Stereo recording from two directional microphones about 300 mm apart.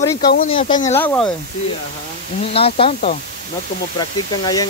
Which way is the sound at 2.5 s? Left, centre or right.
Centre.